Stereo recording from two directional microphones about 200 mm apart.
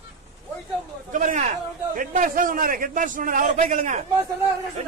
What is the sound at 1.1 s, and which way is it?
A man's voice, 40° right (ahead or behind).